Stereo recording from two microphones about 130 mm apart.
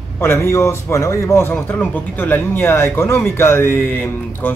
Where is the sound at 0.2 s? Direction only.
20° left (ahead or behind).